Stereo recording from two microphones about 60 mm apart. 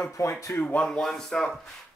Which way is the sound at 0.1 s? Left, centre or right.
Left.